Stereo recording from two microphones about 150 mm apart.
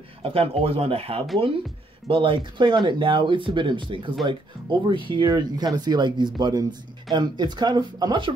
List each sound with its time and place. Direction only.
0.2 s speech: 40° right (ahead or behind)